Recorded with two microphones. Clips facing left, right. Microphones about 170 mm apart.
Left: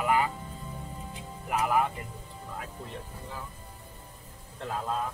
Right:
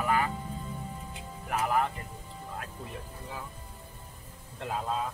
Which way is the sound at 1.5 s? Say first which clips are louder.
Left 2 dB; 10° left (ahead or behind).